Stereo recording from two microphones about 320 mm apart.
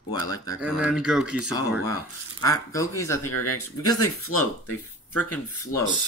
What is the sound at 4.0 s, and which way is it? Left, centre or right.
Speech, left.